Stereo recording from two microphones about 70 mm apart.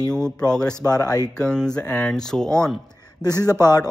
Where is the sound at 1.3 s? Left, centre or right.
Centre.